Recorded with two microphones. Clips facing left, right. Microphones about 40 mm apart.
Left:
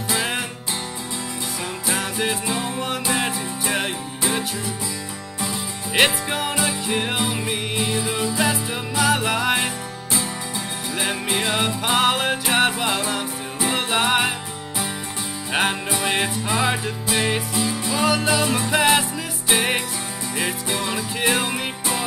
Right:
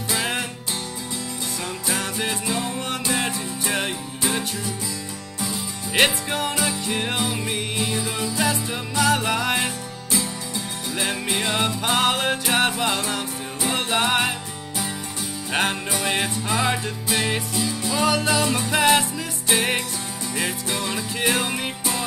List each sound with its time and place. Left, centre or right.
0.1 s music: centre
1.9 s music: centre
11.0 s music: centre
15.5 s music: centre